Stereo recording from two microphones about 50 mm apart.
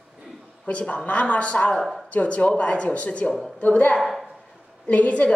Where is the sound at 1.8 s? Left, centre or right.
Centre.